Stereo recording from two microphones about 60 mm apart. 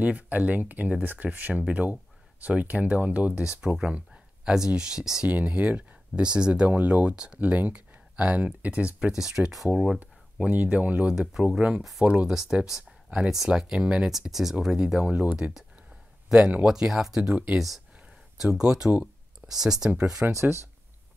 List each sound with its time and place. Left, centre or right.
0.0 s speech: right
3.4 s speech: centre
9.1 s speech: centre
10.4 s speech: right
11.8 s speech: centre
12.1 s speech: centre
13.1 s speech: right
13.5 s speech: centre
14.1 s speech: centre
17.3 s speech: right
17.6 s speech: centre
20.2 s speech: right